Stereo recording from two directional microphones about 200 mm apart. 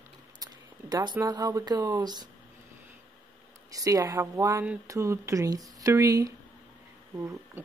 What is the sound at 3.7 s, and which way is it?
Speech, 15° right (ahead or behind).